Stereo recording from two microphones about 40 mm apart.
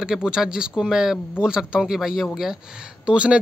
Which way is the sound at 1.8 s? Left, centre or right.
Centre.